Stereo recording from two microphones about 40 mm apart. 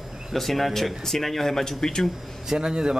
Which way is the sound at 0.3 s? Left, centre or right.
Centre.